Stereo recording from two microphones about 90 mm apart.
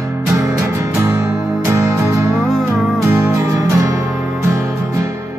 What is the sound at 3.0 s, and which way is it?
Music, 30° right (ahead or behind).